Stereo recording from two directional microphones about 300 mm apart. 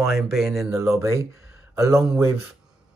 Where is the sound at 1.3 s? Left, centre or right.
Left.